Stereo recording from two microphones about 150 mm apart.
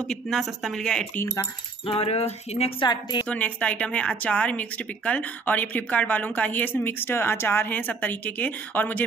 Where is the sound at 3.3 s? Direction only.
10° left (ahead or behind).